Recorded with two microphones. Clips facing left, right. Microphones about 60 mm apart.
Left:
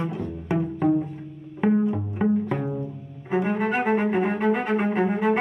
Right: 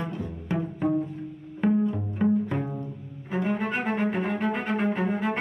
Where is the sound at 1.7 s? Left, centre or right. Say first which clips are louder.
Left 2 dB; left.